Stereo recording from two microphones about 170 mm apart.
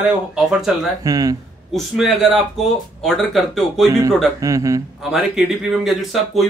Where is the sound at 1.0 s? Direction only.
20° right (ahead or behind).